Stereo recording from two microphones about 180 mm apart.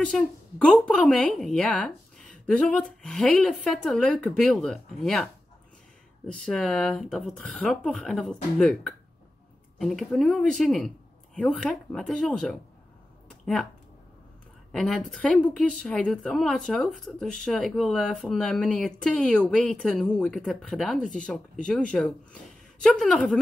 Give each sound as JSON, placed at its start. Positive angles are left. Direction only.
{"t": 0.0, "sound": "speech", "side_deg": 5}
{"t": 13.3, "sound": "a sound", "side_deg": 5}
{"t": 14.7, "sound": "speech", "side_deg": 5}
{"t": 21.0, "sound": "speech", "side_deg": 45}
{"t": 21.6, "sound": "speech", "side_deg": 5}